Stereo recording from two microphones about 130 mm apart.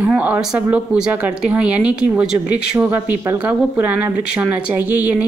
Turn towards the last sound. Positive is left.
turn(degrees=-15)  # may be behind; listen again after turning